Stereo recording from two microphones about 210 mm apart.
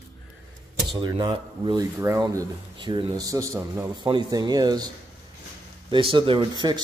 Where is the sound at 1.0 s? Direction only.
20° right (ahead or behind).